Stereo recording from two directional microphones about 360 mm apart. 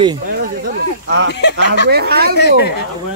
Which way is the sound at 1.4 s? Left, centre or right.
Left.